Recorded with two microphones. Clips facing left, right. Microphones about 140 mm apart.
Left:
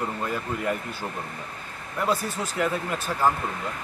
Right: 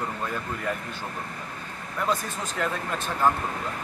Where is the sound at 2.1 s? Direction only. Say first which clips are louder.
Left 2 dB; 5° left (ahead or behind).